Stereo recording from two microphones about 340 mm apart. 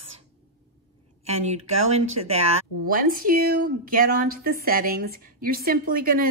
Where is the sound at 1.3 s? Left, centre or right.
Centre.